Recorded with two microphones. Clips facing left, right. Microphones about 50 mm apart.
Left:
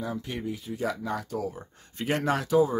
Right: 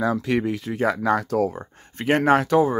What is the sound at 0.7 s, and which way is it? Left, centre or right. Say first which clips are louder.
Speech: right 10 dB; right.